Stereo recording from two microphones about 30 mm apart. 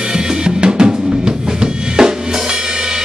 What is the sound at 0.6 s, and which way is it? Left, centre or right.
Drum, right.